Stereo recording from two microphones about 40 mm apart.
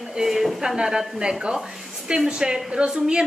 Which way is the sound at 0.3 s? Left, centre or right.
Centre.